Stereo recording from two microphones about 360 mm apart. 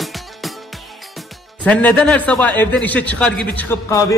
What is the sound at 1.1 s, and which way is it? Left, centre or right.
A woman's voice, centre.